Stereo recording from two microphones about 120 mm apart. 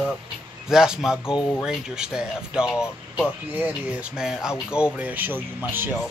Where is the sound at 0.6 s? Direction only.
5° right (ahead or behind).